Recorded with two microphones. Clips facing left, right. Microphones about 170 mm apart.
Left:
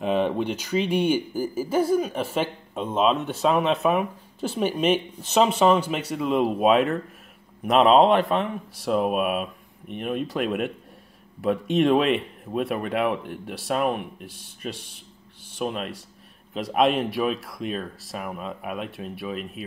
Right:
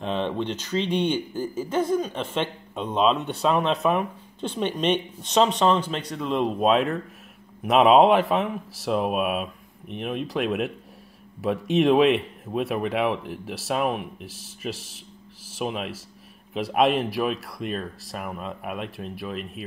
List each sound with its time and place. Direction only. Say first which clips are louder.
0.0 s speech: left 3 dB; 10° left (ahead or behind)